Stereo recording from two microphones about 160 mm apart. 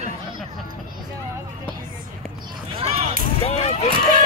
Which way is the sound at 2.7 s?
40° right (ahead or behind).